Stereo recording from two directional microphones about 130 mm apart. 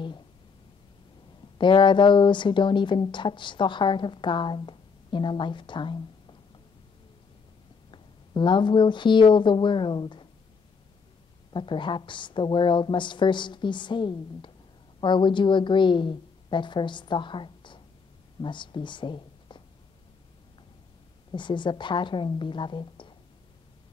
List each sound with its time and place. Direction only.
1.6 s speech: 40° left (ahead or behind)
8.4 s speech: 40° left (ahead or behind)
11.5 s a woman's voice: 40° left (ahead or behind)
21.3 s speech: 35° left (ahead or behind)